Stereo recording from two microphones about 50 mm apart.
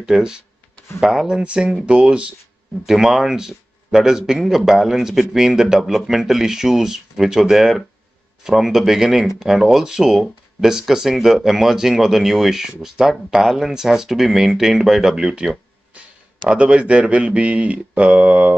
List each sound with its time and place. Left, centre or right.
0.0 s speech: centre
2.9 s speech: centre
16.4 s speech: right